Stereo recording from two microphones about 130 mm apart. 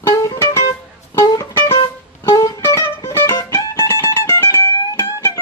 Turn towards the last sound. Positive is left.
turn(degrees=20)  # may be behind; listen again after turning